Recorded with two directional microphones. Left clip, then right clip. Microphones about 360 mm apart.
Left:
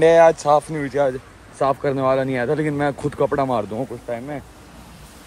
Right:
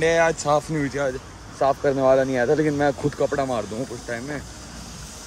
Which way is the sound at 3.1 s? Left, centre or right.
Centre.